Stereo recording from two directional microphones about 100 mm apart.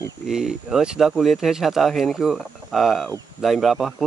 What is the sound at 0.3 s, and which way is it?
Speech, 5° right (ahead or behind).